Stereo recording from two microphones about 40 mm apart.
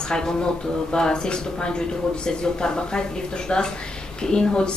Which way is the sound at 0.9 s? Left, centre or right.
Centre.